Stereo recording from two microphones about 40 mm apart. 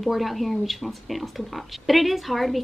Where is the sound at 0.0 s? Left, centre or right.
Centre.